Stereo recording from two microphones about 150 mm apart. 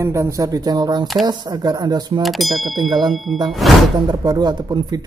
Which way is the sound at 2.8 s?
30° right (ahead or behind).